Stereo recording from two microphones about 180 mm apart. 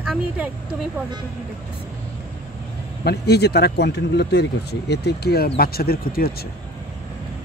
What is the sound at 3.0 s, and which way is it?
Speech, 65° left (ahead or behind).